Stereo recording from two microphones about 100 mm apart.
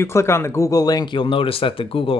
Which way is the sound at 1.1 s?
60° left (ahead or behind).